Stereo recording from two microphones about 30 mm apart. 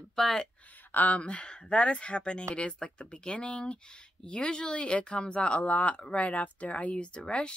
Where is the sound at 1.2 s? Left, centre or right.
Left.